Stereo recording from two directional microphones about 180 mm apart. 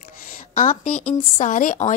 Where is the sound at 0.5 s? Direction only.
45° left (ahead or behind).